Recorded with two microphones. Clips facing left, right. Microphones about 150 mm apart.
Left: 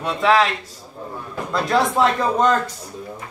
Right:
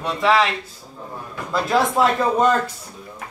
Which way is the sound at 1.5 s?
Centre (ahead or behind).